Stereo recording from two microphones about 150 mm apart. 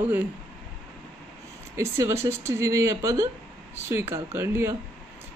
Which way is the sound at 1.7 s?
20° right (ahead or behind).